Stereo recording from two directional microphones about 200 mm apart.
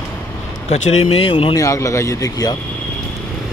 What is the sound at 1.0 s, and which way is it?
Speech, 30° left (ahead or behind).